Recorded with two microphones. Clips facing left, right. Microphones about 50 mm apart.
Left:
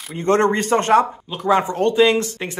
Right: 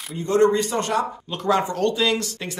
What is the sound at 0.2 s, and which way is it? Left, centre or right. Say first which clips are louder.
Speech: left 1 dB; left.